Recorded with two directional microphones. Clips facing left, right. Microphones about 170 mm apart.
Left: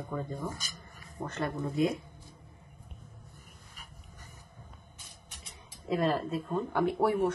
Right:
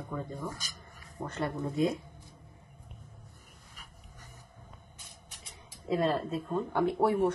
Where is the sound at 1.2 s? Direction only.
5° right (ahead or behind).